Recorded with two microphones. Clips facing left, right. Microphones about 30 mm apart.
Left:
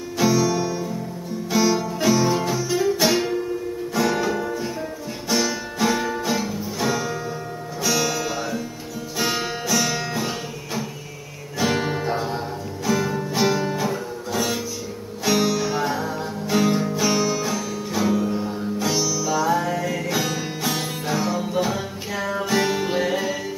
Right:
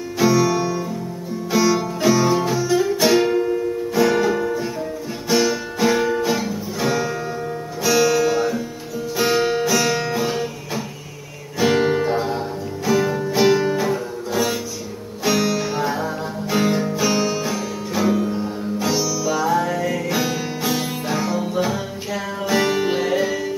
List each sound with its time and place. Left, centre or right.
0.2 s music: centre
3.3 s music: right
3.9 s music: centre